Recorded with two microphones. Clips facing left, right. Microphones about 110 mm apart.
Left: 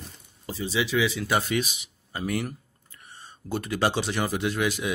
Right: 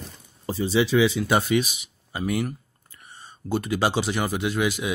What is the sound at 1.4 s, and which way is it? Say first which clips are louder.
Speech: right 5 dB; 5° right (ahead or behind).